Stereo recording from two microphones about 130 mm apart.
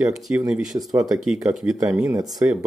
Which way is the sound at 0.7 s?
40° right (ahead or behind).